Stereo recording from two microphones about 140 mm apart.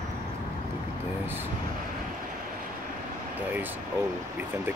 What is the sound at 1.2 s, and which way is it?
Speech, 15° right (ahead or behind).